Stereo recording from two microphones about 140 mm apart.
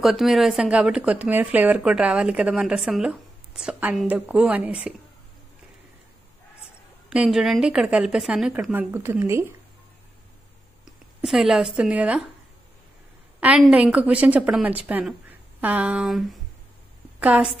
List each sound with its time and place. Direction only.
0.0 s a woman's voice: centre (ahead or behind)
7.1 s speech: 5° right (ahead or behind)
8.7 s a woman's voice: 15° right (ahead or behind)
11.1 s speech: centre (ahead or behind)
13.4 s a woman's voice: 10° right (ahead or behind)